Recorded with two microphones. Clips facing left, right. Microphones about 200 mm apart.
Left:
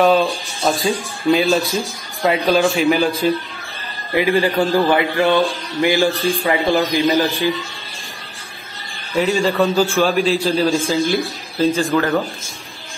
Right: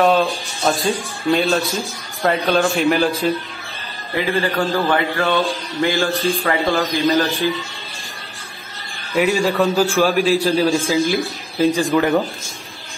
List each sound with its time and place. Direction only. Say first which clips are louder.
0.0 s a man's voice: left 1 dB; centre (ahead or behind)
4.1 s mantra: left 4 dB; 15° left (ahead or behind)
9.3 s a man's voice: left 3 dB; centre (ahead or behind)
11.9 s speech: right 2 dB; 15° right (ahead or behind)